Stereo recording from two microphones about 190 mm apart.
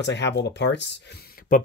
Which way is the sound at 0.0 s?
65° left (ahead or behind).